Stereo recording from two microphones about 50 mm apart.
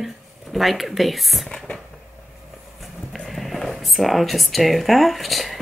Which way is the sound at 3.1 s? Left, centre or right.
Centre.